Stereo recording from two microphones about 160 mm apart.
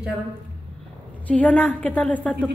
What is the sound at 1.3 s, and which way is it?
A woman's voice, 10° left (ahead or behind).